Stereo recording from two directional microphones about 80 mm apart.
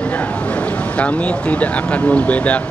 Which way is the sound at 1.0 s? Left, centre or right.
Centre.